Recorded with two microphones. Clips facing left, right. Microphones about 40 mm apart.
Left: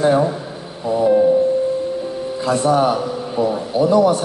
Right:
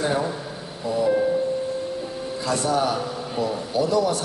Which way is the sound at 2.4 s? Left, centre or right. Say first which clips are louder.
Left 7 dB; left.